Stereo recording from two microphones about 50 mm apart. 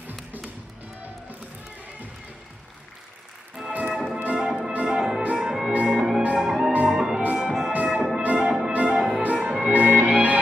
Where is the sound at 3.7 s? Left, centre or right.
Right.